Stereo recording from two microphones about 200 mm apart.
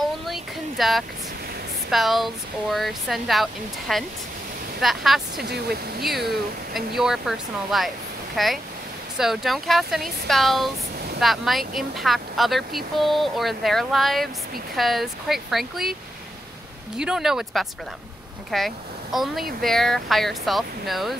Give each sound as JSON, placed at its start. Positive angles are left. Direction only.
{"t": 0.3, "sound": "a sound", "side_deg": 0}
{"t": 1.9, "sound": "speech", "side_deg": 0}
{"t": 5.4, "sound": "speech", "side_deg": -55}
{"t": 7.0, "sound": "speech", "side_deg": 0}
{"t": 16.9, "sound": "speech", "side_deg": -5}